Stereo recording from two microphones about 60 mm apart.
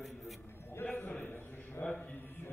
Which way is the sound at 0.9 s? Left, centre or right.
Left.